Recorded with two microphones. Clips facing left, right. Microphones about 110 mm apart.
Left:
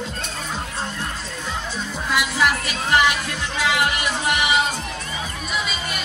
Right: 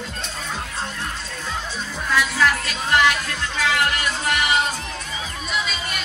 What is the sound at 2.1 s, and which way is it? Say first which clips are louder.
Music: right 1 dB; 10° left (ahead or behind).